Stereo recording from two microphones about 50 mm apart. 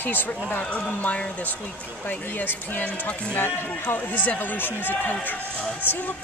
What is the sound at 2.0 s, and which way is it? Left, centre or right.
Speech, left.